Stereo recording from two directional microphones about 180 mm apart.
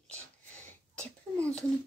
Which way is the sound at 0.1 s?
10° left (ahead or behind).